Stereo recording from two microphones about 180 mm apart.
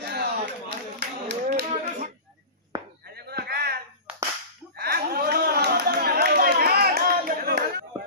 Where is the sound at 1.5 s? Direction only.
50° right (ahead or behind).